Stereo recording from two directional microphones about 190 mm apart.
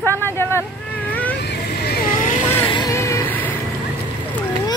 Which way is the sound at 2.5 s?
25° left (ahead or behind).